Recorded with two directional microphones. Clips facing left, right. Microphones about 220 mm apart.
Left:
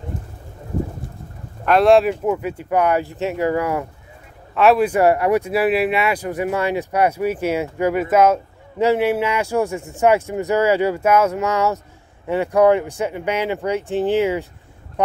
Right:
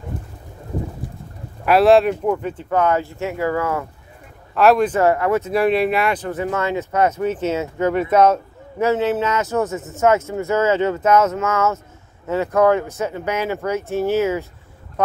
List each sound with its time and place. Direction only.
1.7 s speech: centre (ahead or behind); by 3.8 s 15° left (ahead or behind)
4.6 s speech: 5° left (ahead or behind)